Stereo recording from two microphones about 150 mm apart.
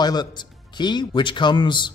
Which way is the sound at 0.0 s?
30° left (ahead or behind).